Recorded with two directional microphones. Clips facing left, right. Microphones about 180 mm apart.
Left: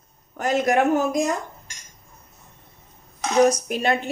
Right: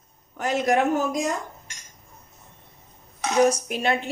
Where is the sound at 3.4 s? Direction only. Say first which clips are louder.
Left 2 dB; 45° left (ahead or behind).